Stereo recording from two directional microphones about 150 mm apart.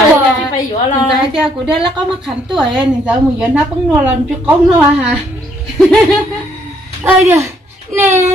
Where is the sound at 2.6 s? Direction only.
30° right (ahead or behind).